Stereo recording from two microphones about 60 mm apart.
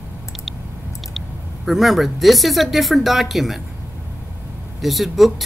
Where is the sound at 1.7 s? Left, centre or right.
Centre.